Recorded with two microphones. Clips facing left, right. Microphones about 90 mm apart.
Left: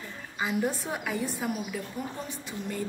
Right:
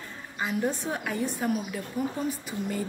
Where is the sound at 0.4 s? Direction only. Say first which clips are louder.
Even; centre (ahead or behind).